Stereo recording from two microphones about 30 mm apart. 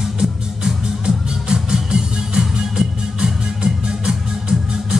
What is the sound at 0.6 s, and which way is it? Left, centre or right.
Music, right.